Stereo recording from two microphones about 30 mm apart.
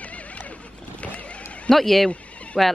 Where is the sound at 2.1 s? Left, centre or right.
Left.